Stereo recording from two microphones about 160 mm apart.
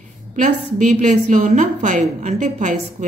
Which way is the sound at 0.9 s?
45° right (ahead or behind).